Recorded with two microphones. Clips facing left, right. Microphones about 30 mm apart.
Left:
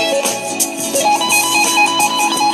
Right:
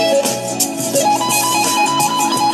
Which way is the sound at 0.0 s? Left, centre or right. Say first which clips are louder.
Right 2 dB; left.